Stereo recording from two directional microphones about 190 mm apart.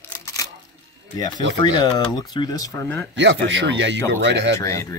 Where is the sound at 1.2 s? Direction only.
25° left (ahead or behind).